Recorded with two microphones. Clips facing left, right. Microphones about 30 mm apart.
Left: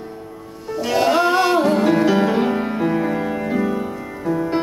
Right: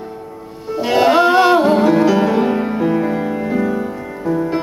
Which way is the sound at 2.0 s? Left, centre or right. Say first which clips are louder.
Right 3 dB; centre.